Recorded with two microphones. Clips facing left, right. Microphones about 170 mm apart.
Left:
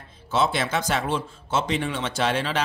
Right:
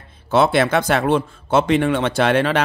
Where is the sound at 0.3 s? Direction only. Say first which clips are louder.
Right 8 dB; 60° right (ahead or behind).